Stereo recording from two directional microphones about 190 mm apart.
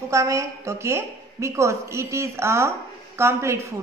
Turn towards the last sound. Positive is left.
turn(degrees=-15)  # may be behind; listen again after turning